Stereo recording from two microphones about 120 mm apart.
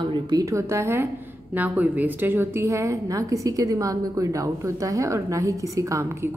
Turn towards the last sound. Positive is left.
turn(degrees=-25)  # may be behind; listen again after turning